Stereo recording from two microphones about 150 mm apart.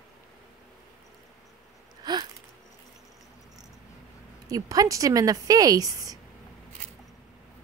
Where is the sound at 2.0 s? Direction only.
25° right (ahead or behind).